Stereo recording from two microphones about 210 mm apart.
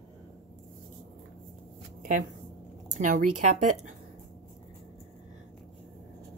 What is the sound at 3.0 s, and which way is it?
Speech, 40° right (ahead or behind).